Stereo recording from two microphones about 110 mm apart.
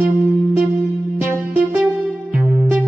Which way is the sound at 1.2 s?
20° right (ahead or behind).